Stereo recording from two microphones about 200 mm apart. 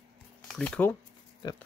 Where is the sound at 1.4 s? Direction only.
20° left (ahead or behind).